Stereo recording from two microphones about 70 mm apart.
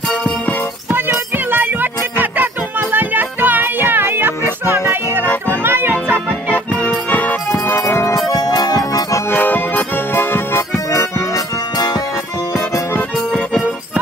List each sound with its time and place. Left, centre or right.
0.9 s music: right
7.1 s jingle bell: left
7.6 s music: left
8.3 s music: left
9.3 s music: left
10.9 s music: left